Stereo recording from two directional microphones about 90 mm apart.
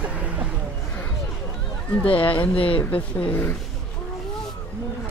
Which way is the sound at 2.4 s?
80° left.